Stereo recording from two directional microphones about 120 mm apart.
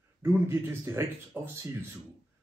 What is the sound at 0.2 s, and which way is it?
Speech, 20° right (ahead or behind).